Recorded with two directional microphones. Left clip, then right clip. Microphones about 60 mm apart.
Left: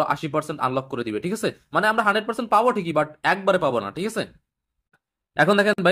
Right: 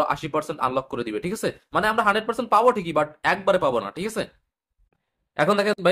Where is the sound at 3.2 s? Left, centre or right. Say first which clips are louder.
Even; left.